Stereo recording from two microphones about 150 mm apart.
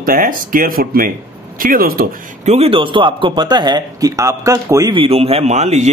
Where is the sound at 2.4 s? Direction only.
45° right (ahead or behind); by 4.9 s 20° right (ahead or behind).